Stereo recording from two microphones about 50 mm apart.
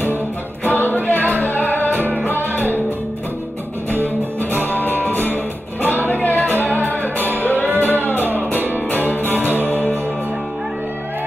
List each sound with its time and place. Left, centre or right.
0.7 s music: left
4.0 s music: left